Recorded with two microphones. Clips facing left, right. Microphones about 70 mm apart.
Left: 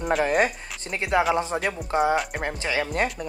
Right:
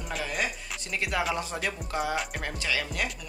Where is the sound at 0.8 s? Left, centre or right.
Left.